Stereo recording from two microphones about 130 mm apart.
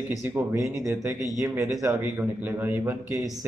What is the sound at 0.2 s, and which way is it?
Speech, 20° right (ahead or behind).